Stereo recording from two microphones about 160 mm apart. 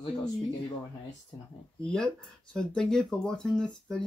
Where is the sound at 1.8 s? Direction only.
5° left (ahead or behind).